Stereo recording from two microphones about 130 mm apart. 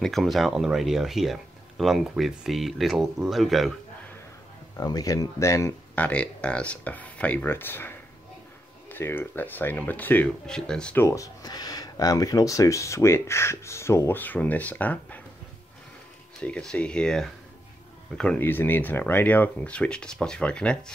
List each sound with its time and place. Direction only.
0.0 s speech: centre (ahead or behind)
4.7 s speech: 30° left (ahead or behind)
6.0 s speech: 10° left (ahead or behind)
11.0 s speech: 25° left (ahead or behind)
16.4 s speech: 10° left (ahead or behind)